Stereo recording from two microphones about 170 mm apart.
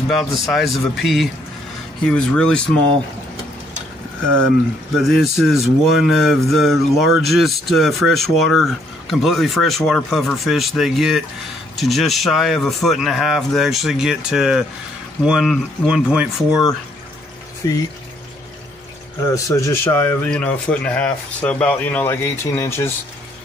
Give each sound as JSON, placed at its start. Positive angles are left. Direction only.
{"t": 0.1, "sound": "speech", "side_deg": 0}
{"t": 4.9, "sound": "speech", "side_deg": 0}
{"t": 17.6, "sound": "speech", "side_deg": 25}
{"t": 19.3, "sound": "speech", "side_deg": 20}